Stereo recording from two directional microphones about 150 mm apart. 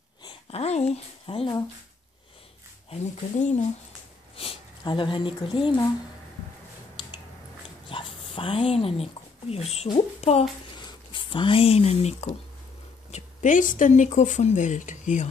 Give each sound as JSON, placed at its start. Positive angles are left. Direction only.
{"t": 0.5, "sound": "speech", "side_deg": 45}
{"t": 2.9, "sound": "speech", "side_deg": 50}
{"t": 4.4, "sound": "speech", "side_deg": 35}
{"t": 7.9, "sound": "a sound", "side_deg": 35}
{"t": 9.9, "sound": "speech", "side_deg": 45}
{"t": 10.7, "sound": "a sound", "side_deg": 30}
{"t": 13.1, "sound": "speech", "side_deg": 55}